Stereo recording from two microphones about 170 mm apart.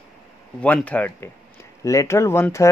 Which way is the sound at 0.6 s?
10° left (ahead or behind).